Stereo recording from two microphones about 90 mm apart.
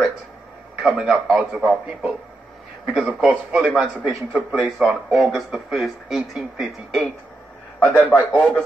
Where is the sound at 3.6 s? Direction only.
Centre (ahead or behind).